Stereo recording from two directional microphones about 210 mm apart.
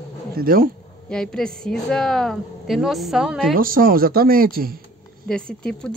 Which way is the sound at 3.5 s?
40° right (ahead or behind).